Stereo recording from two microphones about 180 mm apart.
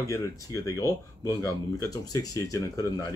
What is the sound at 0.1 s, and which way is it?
Speech, 15° left (ahead or behind).